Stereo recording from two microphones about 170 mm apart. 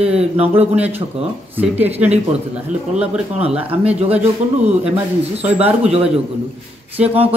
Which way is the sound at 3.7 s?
35° right (ahead or behind).